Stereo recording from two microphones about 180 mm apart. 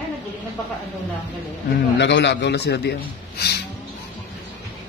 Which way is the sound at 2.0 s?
75° left (ahead or behind).